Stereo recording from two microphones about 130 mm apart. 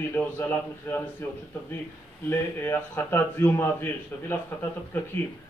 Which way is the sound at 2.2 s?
15° left (ahead or behind).